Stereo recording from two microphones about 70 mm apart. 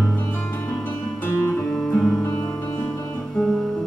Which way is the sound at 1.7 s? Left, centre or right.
Centre.